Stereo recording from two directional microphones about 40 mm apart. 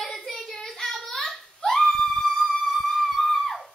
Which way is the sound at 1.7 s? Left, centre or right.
Centre.